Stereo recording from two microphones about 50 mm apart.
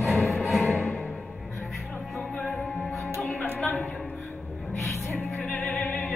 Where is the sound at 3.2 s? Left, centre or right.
Left.